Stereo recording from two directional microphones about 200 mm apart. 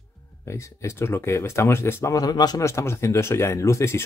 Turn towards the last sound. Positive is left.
turn(degrees=15)  # may be behind; listen again after turning